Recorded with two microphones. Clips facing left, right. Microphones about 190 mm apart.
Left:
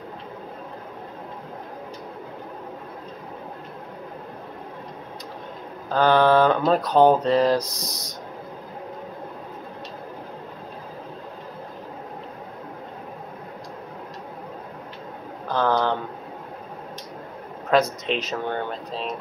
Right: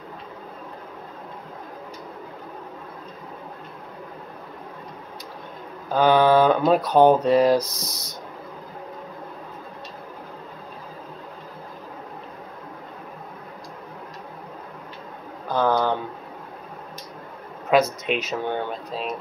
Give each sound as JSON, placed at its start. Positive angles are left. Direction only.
{"t": 5.9, "sound": "speech", "side_deg": -10}
{"t": 7.6, "sound": "speech", "side_deg": 15}
{"t": 15.5, "sound": "a sound", "side_deg": -5}
{"t": 17.7, "sound": "speech", "side_deg": -5}